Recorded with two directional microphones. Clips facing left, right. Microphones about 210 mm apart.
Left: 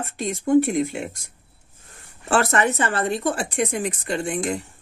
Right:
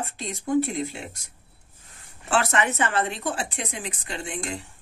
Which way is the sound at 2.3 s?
45° left (ahead or behind).